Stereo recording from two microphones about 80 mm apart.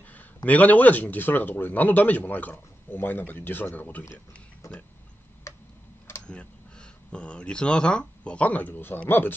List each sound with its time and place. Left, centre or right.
0.5 s speech: centre
4.6 s speech: left
6.2 s speech: centre